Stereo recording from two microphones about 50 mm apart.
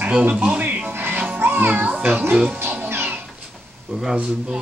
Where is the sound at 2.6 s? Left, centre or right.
Right.